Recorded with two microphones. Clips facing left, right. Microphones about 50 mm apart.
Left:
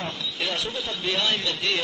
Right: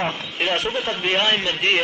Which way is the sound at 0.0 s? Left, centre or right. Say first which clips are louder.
Right 6 dB; right.